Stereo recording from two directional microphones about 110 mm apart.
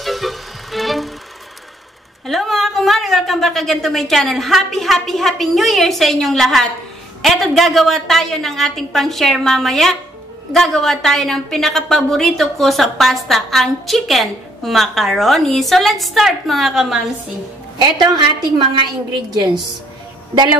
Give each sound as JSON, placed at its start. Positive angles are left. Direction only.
{"t": 0.0, "sound": "vehicle", "side_deg": 0}
{"t": 2.2, "sound": "a woman's voice", "side_deg": 0}
{"t": 17.9, "sound": "a woman's voice", "side_deg": -40}